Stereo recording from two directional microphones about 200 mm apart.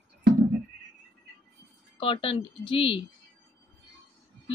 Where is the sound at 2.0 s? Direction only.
25° left (ahead or behind).